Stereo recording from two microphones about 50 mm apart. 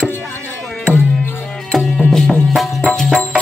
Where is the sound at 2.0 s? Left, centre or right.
Centre.